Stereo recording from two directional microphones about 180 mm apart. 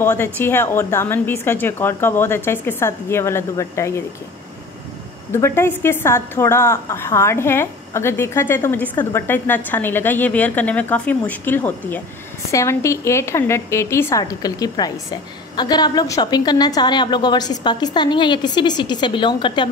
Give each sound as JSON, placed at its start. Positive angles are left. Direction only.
{"t": 0.0, "sound": "a woman's voice", "side_deg": 10}
{"t": 5.3, "sound": "a woman's voice", "side_deg": 15}